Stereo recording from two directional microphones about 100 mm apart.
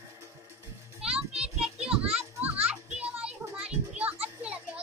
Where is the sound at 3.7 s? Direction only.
15° right (ahead or behind).